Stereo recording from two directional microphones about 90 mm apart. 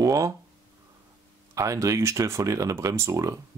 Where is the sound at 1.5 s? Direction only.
35° right (ahead or behind).